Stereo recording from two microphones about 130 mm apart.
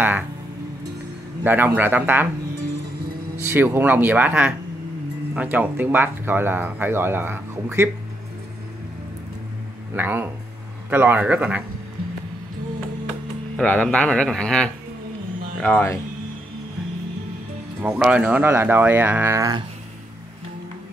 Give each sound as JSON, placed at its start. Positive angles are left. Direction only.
{"t": 1.4, "sound": "speech", "side_deg": -15}
{"t": 3.4, "sound": "speech", "side_deg": -15}
{"t": 9.9, "sound": "speech", "side_deg": -15}
{"t": 13.6, "sound": "speech", "side_deg": 10}
{"t": 17.8, "sound": "speech", "side_deg": -10}